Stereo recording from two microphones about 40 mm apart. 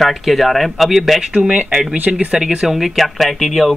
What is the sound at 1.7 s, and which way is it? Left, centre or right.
Speech, centre.